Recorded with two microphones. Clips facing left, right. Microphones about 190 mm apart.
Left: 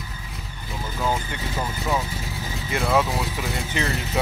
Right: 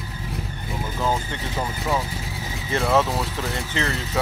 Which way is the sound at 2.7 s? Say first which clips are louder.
Right 2 dB; 5° left (ahead or behind).